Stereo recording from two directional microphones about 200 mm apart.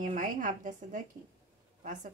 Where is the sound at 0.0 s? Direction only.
40° right (ahead or behind).